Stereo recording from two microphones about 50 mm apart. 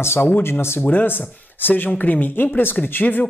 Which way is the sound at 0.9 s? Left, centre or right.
Left.